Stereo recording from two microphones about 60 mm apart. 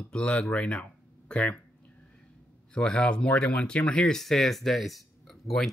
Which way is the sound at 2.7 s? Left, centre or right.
Centre.